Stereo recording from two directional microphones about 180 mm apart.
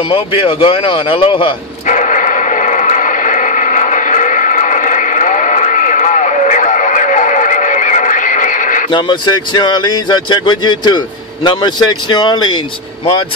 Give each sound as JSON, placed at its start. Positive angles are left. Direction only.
{"t": 0.1, "sound": "speech", "side_deg": 30}
{"t": 1.9, "sound": "radio", "side_deg": 45}
{"t": 8.9, "sound": "speech", "side_deg": 25}